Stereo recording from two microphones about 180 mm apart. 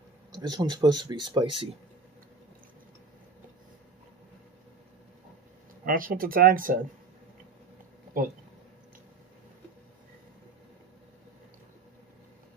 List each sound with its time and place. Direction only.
0.3 s speech: 20° right (ahead or behind)
5.9 s speech: 50° right (ahead or behind)